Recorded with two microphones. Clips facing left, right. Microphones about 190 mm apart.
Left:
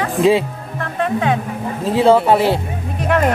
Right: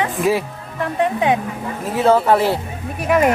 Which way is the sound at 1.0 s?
15° right (ahead or behind).